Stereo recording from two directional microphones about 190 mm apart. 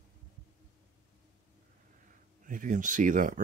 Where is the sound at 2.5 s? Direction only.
45° right (ahead or behind).